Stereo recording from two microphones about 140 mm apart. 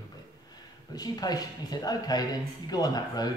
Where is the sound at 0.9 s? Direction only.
30° left (ahead or behind).